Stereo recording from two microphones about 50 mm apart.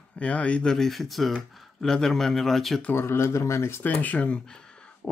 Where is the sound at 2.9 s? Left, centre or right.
Left.